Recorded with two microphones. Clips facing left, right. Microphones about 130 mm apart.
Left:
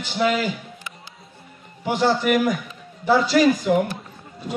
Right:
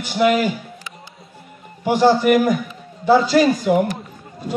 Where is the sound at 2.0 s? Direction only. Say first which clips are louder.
Right 5 dB; 35° right (ahead or behind).